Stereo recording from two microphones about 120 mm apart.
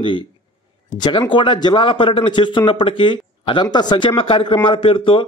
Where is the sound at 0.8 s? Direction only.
35° left (ahead or behind).